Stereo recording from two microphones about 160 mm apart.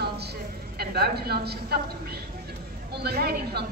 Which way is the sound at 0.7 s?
80° right.